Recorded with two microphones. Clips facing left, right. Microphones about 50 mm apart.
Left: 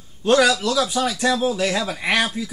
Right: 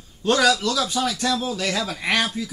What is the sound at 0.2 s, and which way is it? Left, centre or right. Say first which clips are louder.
A man's voice: left 2 dB; centre.